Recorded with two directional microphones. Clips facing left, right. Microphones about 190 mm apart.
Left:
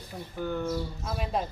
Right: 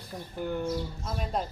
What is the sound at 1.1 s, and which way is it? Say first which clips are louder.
Speech: left 1 dB; 5° left (ahead or behind).